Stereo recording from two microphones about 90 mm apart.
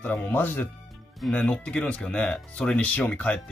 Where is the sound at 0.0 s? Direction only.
20° left (ahead or behind).